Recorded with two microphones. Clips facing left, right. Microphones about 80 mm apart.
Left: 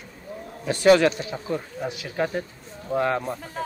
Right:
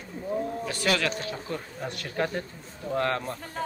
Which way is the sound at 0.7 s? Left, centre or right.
Left.